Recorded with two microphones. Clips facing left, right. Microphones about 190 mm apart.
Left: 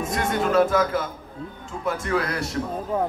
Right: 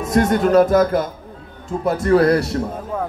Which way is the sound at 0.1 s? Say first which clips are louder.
Right 9 dB; 40° right (ahead or behind).